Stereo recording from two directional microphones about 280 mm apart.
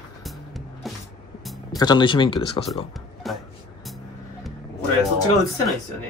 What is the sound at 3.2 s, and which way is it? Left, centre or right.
Vehicle, centre.